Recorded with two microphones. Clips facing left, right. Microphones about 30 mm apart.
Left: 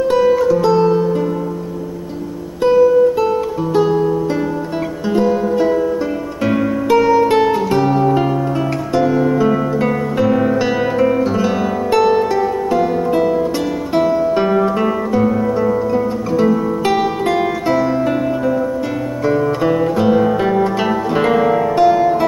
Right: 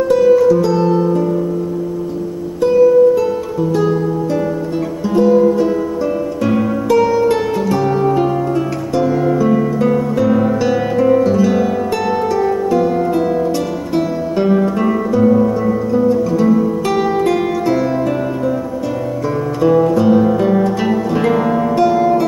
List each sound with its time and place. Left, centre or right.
0.1 s music: centre
2.6 s music: left